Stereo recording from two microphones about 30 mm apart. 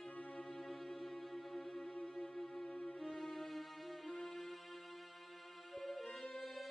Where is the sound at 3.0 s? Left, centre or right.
Centre.